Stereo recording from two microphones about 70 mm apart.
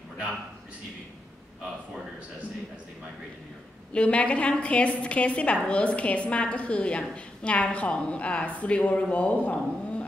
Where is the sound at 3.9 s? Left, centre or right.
Centre.